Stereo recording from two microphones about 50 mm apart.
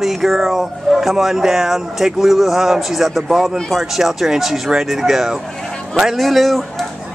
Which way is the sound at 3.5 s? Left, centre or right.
Centre.